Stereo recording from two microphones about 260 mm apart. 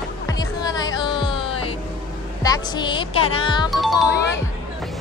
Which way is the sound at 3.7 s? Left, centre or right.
Centre.